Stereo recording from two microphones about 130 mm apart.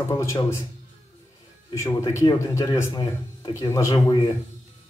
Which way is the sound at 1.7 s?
25° left (ahead or behind).